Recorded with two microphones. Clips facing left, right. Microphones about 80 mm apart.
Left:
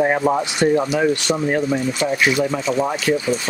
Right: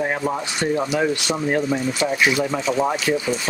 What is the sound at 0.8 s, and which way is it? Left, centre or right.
Speech, centre.